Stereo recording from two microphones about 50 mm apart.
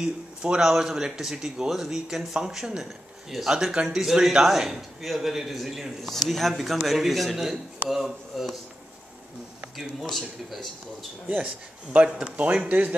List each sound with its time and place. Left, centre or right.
0.0 s a man's voice: centre
10.0 s a man's voice: centre
11.2 s a man's voice: right